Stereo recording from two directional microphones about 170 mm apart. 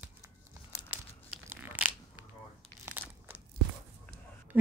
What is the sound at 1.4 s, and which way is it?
Crunch, 10° right (ahead or behind).